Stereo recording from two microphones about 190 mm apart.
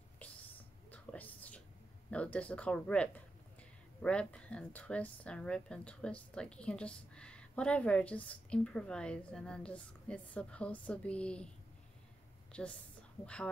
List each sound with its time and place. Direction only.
0.9 s whispering: 10° left (ahead or behind)
2.0 s speech: 5° left (ahead or behind)
12.5 s speech: 5° left (ahead or behind)